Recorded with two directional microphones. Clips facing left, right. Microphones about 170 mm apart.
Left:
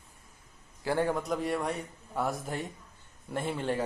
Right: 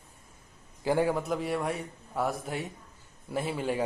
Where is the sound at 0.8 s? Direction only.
10° right (ahead or behind).